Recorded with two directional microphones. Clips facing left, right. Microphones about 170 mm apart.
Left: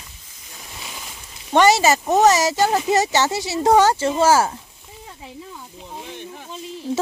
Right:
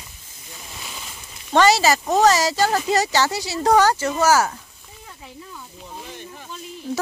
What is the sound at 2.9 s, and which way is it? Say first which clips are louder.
Speech: left 1 dB; 20° left (ahead or behind).